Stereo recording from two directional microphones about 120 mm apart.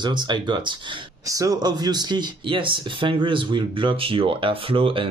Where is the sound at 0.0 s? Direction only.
40° right (ahead or behind).